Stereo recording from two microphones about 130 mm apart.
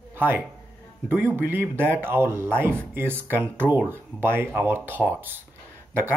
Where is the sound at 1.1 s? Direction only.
15° right (ahead or behind).